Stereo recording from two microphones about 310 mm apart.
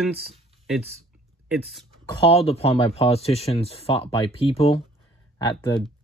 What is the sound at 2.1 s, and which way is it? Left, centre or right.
Speech, centre.